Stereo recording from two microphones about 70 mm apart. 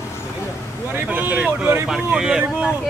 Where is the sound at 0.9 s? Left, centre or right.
Right.